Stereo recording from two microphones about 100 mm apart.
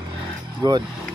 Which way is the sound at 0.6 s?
45° right (ahead or behind).